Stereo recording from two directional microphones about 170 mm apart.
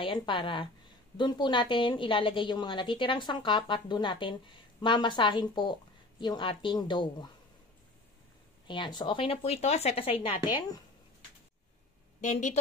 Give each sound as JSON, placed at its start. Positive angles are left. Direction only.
{"t": 0.0, "sound": "a woman's voice", "side_deg": 30}
{"t": 8.6, "sound": "speech", "side_deg": 25}
{"t": 12.2, "sound": "speech", "side_deg": 45}